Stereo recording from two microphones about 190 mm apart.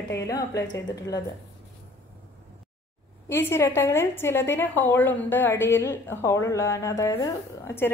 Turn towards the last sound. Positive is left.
turn(degrees=15)  # may be behind; listen again after turning